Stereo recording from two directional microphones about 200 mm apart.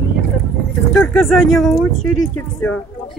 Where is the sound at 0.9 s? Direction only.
5° left (ahead or behind).